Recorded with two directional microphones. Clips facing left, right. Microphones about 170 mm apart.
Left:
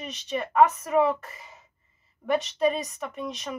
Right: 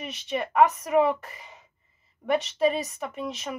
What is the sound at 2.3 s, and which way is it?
A woman's voice, centre (ahead or behind).